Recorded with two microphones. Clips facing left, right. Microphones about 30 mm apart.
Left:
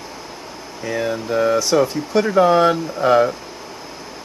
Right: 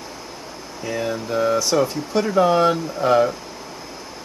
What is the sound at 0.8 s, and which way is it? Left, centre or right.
Speech, centre.